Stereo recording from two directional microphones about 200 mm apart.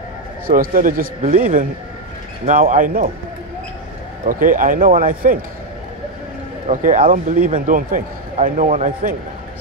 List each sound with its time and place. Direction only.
0.5 s a man's voice: 45° right (ahead or behind)
4.2 s a man's voice: 40° right (ahead or behind)
6.7 s a man's voice: 40° right (ahead or behind)